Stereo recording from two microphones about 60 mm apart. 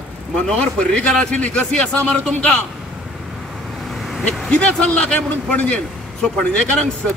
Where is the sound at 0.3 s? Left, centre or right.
Centre.